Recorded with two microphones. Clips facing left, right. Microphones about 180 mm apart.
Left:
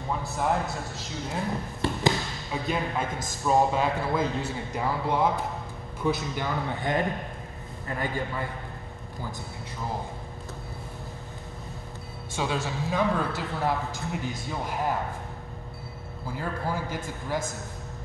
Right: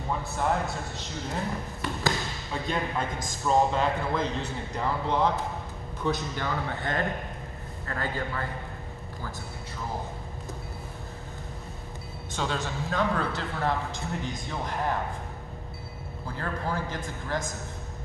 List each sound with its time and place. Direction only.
0.1 s a man's voice: centre (ahead or behind)
1.8 s a sound: 30° left (ahead or behind)
2.5 s a man's voice: 5° left (ahead or behind)
12.4 s a man's voice: 5° left (ahead or behind)
16.3 s a man's voice: 10° left (ahead or behind)